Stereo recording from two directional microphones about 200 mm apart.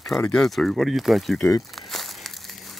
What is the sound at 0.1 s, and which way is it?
Speech, 5° left (ahead or behind).